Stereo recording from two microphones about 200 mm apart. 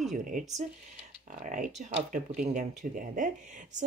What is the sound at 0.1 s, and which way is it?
Speech, 40° right (ahead or behind).